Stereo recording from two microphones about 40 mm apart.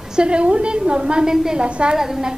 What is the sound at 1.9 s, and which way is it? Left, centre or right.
Speech, centre.